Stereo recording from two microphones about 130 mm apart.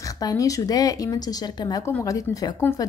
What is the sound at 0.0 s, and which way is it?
A woman's voice, 25° left (ahead or behind).